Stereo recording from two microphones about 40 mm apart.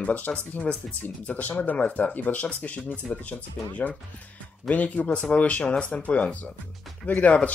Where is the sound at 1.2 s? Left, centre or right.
Left.